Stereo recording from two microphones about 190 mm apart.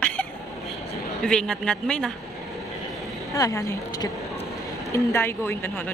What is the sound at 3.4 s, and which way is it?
Speech, 15° left (ahead or behind).